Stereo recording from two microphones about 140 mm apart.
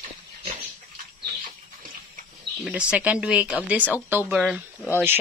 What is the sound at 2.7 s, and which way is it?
Speech, 10° right (ahead or behind).